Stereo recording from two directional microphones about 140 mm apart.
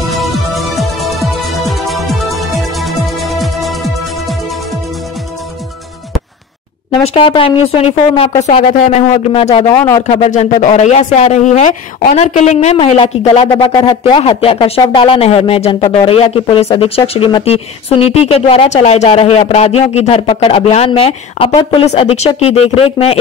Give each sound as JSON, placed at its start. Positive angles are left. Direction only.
{"t": 0.1, "sound": "music", "side_deg": 0}
{"t": 7.2, "sound": "speech", "side_deg": 40}
{"t": 13.6, "sound": "speech", "side_deg": 30}